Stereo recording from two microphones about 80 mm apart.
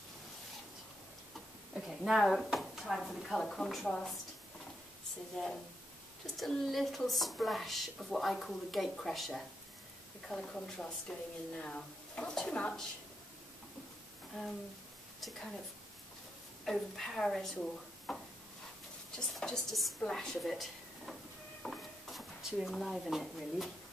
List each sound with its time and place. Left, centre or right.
1.7 s speech: centre
5.4 s speech: centre
15.1 s a woman's voice: centre
16.6 s speech: centre
21.6 s a sound: centre
22.4 s speech: centre